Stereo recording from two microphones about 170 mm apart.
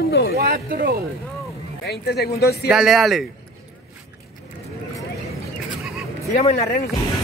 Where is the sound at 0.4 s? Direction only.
60° right (ahead or behind).